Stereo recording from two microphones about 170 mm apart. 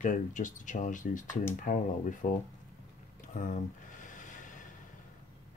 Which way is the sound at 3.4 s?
50° left (ahead or behind).